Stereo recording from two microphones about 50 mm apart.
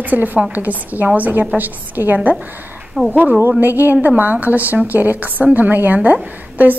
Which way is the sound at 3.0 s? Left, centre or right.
Centre.